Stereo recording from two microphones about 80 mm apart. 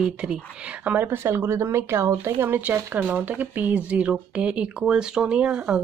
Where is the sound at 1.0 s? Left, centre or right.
Right.